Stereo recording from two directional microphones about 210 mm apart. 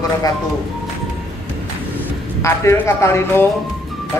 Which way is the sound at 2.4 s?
15° left (ahead or behind).